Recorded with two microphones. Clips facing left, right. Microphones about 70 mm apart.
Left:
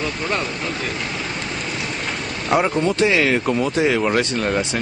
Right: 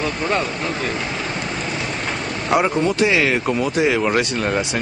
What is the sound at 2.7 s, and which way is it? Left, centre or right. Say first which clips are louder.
Speech: even; centre.